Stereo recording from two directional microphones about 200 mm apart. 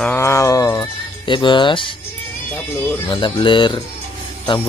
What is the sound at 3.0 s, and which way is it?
Speech, 25° left (ahead or behind).